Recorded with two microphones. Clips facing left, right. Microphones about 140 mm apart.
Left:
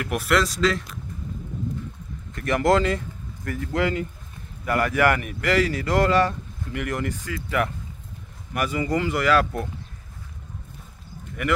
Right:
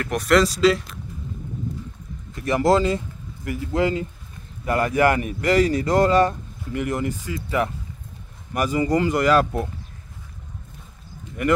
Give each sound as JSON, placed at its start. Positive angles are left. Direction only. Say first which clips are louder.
{"t": 0.0, "sound": "speech", "louder": "right 4 dB", "side_deg": 5}
{"t": 0.6, "sound": "speech", "louder": "right 5 dB", "side_deg": -10}
{"t": 2.4, "sound": "speech", "louder": "right 2 dB", "side_deg": -30}
{"t": 3.4, "sound": "speech", "louder": "right 2 dB", "side_deg": -15}
{"t": 8.5, "sound": "speech", "louder": "right 4 dB", "side_deg": -35}